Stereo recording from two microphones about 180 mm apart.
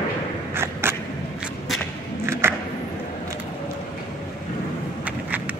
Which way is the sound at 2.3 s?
15° right (ahead or behind).